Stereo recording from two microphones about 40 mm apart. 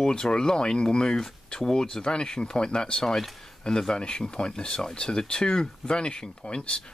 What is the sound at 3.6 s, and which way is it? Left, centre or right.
Speech, centre.